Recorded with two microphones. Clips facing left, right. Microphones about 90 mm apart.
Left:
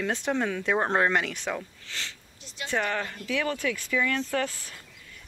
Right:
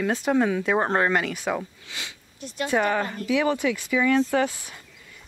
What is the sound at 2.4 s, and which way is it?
Speech, 50° right (ahead or behind).